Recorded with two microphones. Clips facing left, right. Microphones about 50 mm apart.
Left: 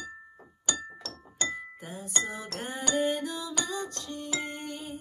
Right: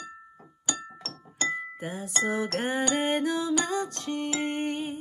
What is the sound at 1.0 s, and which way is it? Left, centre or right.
Music, right.